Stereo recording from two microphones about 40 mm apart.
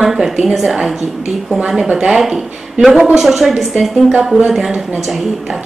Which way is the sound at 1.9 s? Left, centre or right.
Right.